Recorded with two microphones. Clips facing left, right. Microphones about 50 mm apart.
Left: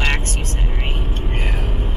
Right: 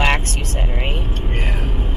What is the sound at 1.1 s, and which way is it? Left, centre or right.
Vehicle, centre.